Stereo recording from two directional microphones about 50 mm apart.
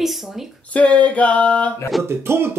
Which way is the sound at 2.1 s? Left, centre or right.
Right.